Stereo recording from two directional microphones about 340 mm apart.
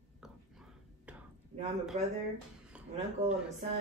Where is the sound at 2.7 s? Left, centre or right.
Centre.